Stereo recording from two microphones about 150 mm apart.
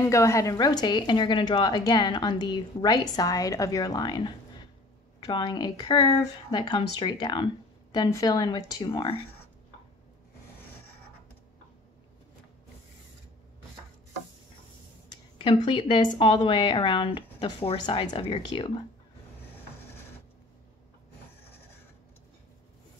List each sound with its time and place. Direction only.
0.0 s a woman's voice: 20° left (ahead or behind); by 9.2 s 35° left (ahead or behind)
15.0 s a woman's voice: 30° left (ahead or behind)